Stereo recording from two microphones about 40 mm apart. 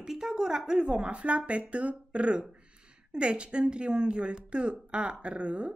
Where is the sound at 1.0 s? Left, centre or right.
Right.